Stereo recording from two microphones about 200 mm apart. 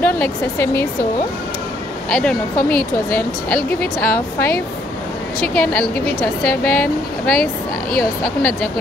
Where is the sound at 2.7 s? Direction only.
50° left (ahead or behind).